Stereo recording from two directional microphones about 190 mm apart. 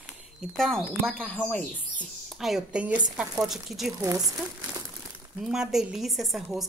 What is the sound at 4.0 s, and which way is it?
Speech, 15° right (ahead or behind).